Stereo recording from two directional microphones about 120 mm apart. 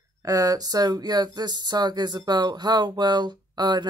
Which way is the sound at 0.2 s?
30° right (ahead or behind).